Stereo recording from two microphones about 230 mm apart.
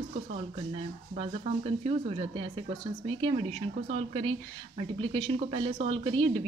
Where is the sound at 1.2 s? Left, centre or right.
Right.